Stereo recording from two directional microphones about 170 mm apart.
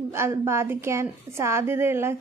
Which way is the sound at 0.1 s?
15° right (ahead or behind).